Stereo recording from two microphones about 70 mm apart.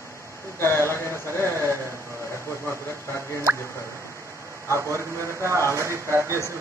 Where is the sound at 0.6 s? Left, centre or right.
Left.